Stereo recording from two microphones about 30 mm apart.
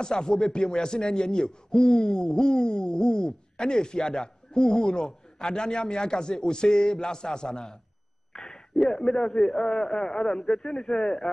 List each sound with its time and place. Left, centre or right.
0.0 s speech: left
2.0 s hoot: left
2.2 s speech: left